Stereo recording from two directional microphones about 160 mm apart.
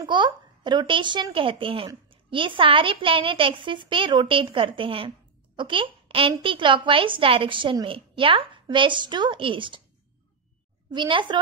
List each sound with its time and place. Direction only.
0.0 s a child's voice: 30° right (ahead or behind)
10.9 s a woman's voice: 30° right (ahead or behind)